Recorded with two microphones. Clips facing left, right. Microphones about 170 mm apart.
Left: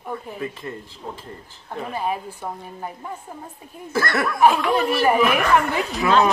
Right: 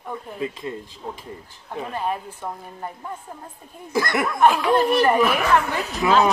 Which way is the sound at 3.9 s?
15° right (ahead or behind).